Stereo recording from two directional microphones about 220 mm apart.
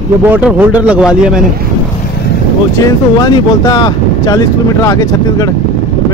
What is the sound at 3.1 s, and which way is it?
Speech, 20° left (ahead or behind).